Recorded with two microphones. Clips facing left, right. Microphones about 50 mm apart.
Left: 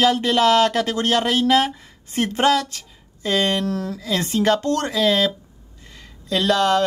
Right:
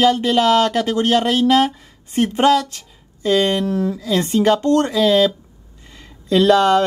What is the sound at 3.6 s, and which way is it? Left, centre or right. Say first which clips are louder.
Speech: right 5 dB; centre.